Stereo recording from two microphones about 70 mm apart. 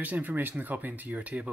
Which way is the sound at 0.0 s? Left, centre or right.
Right.